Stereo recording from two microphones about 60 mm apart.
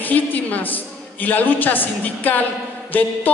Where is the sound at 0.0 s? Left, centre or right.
Left.